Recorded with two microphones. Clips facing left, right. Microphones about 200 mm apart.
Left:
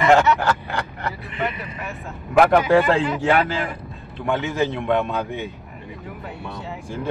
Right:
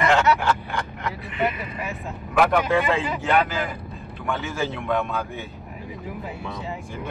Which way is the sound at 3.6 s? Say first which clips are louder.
Left 1 dB; centre (ahead or behind).